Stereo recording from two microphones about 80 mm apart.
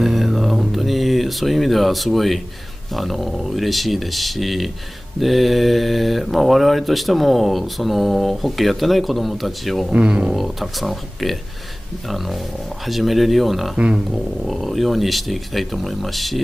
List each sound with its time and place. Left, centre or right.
0.0 s a sound: centre
2.9 s speech: centre
9.9 s speech: centre
12.8 s speech: centre
13.7 s speech: centre
14.1 s speech: centre